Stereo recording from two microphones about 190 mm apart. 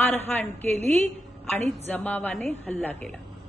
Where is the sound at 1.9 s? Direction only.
10° left (ahead or behind).